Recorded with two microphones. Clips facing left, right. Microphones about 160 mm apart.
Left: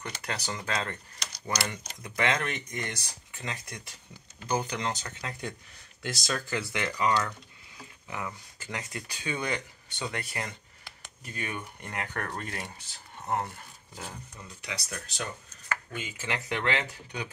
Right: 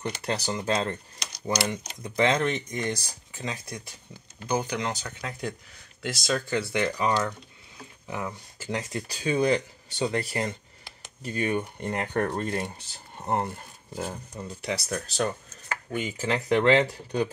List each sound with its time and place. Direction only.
0.2 s speech: 25° right (ahead or behind)
3.3 s speech: 15° right (ahead or behind)
6.0 s speech: 25° right (ahead or behind)